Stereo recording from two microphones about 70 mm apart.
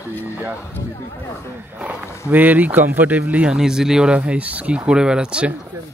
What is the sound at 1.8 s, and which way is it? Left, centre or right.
Speech, right.